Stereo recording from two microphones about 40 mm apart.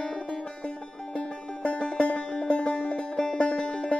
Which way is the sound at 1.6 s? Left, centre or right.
Left.